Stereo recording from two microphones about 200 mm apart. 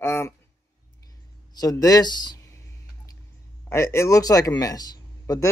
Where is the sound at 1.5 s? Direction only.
20° left (ahead or behind).